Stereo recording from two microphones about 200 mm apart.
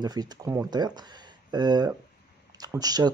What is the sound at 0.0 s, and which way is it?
Speech, 20° right (ahead or behind).